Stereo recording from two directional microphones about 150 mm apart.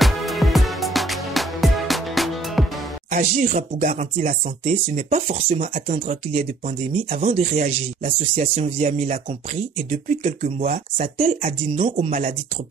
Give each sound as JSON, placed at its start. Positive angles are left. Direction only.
{"t": 0.0, "sound": "music", "side_deg": 0}
{"t": 3.1, "sound": "speech", "side_deg": -55}